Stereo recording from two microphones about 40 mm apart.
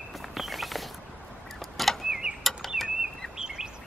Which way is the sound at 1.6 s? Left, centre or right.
Centre.